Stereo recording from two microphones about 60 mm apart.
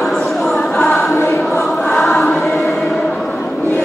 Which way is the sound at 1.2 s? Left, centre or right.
Left.